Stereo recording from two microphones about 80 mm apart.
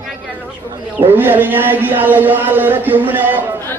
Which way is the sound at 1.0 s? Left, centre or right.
Right.